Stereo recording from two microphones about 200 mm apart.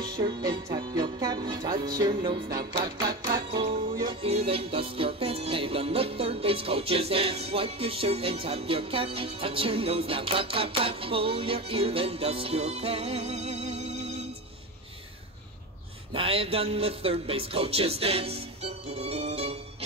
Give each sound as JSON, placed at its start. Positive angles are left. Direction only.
{"t": 0.0, "sound": "music", "side_deg": -20}
{"t": 16.1, "sound": "music", "side_deg": -30}